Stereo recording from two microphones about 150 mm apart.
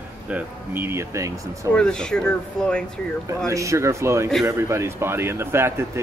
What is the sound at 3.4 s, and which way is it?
Speech, 20° right (ahead or behind).